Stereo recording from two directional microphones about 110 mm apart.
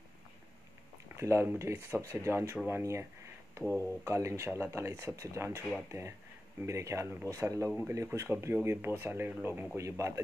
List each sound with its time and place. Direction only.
1.1 s speech: 25° right (ahead or behind)